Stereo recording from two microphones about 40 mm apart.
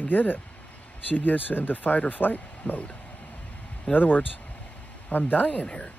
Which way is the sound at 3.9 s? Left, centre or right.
Left.